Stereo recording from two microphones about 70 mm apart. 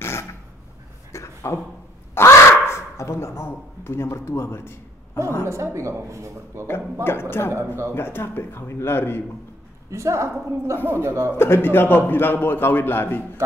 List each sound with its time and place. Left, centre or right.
0.0 s a sound: left
2.1 s crow: left
3.4 s a man's voice: left
5.4 s speech: right
6.7 s speech: left
9.8 s a woman's voice: right
11.3 s speech: left